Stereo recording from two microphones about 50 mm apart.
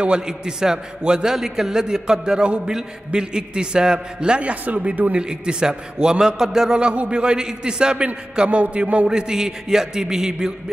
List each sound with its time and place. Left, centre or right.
0.0 s a man's voice: centre
9.1 s a man's voice: centre